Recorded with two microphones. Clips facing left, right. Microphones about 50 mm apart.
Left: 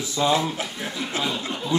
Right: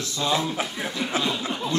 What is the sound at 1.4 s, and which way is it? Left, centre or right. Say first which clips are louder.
Speech: right 2 dB; centre.